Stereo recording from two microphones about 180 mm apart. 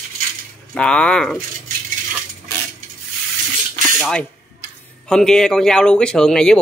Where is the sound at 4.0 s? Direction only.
5° left (ahead or behind).